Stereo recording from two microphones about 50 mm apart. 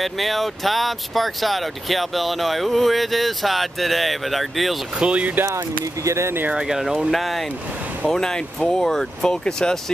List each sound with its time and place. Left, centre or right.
0.0 s speech: centre
4.9 s speech: right
6.0 s speech: right
6.5 s speech: centre
8.1 s speech: centre